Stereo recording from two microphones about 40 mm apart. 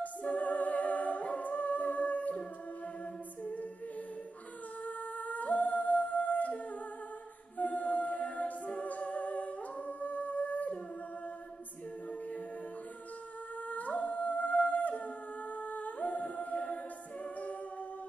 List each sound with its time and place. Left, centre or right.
0.0 s a capella: left
4.8 s humming: left
7.5 s music: left
13.7 s humming: left